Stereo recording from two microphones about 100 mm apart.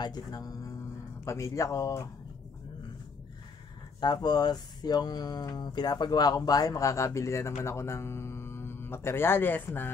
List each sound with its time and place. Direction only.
0.0 s speech: 40° left (ahead or behind)
4.0 s speech: 45° left (ahead or behind); by 9.9 s 20° left (ahead or behind)